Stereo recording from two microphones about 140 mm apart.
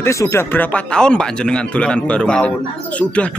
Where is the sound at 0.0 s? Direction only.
20° left (ahead or behind).